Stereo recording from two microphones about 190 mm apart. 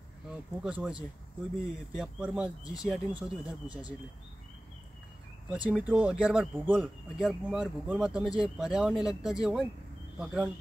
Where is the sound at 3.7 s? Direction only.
20° left (ahead or behind).